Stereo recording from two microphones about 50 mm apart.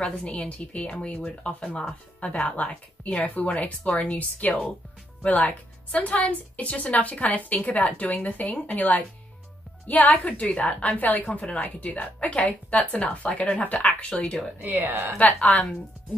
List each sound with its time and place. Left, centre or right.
0.0 s a woman's voice: left
14.6 s speech: right
15.1 s a woman's voice: left